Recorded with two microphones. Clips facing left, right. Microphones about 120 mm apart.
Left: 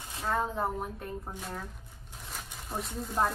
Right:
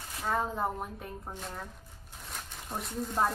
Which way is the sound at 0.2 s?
Centre (ahead or behind).